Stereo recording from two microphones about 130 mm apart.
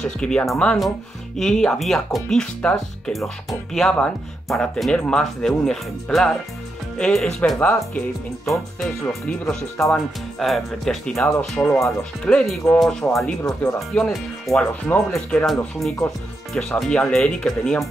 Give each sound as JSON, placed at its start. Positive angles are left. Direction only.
{"t": 0.0, "sound": "speech", "side_deg": 10}
{"t": 9.0, "sound": "speech", "side_deg": 10}
{"t": 13.4, "sound": "speech", "side_deg": 15}
{"t": 13.7, "sound": "speech", "side_deg": 5}
{"t": 15.1, "sound": "speech", "side_deg": 0}